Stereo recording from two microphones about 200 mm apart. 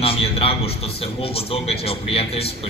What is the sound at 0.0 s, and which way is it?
A man's voice, 30° left (ahead or behind).